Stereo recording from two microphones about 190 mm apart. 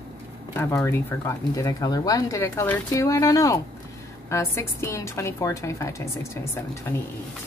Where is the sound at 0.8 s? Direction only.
10° left (ahead or behind).